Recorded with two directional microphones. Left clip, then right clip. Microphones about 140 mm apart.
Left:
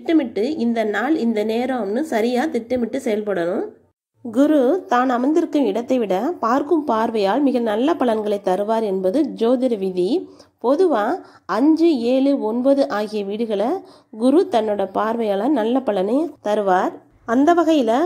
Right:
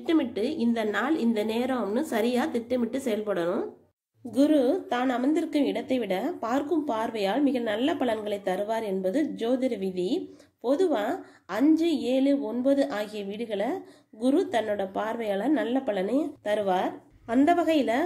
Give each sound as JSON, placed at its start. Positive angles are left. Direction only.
{"t": 0.0, "sound": "a woman's voice", "side_deg": 25}